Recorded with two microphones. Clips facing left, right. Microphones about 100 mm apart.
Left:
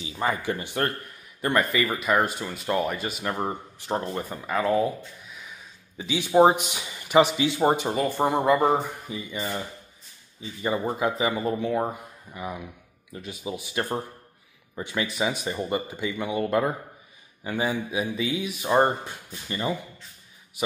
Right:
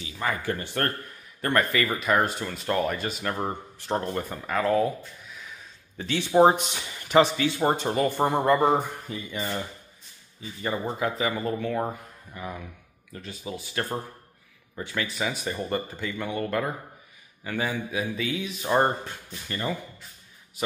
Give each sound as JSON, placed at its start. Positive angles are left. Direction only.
{"t": 0.0, "sound": "a sound", "side_deg": 20}
{"t": 0.5, "sound": "speech", "side_deg": 10}
{"t": 5.9, "sound": "speech", "side_deg": 10}
{"t": 10.6, "sound": "speech", "side_deg": 15}